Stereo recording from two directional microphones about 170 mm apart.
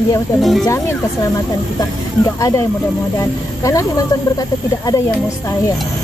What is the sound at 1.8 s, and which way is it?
Speech, 20° left (ahead or behind).